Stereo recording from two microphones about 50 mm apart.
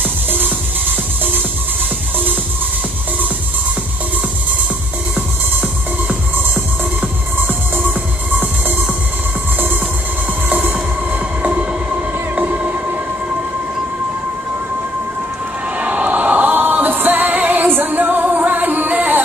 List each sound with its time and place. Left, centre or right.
0.0 s music: right
7.3 s music: right
10.6 s train: right
15.8 s music: right